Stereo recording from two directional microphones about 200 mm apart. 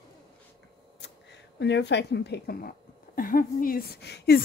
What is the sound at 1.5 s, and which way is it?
A woman's voice, 60° left (ahead or behind).